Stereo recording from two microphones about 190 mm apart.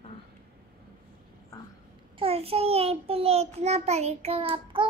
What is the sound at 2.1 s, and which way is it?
A child's voice, 30° right (ahead or behind).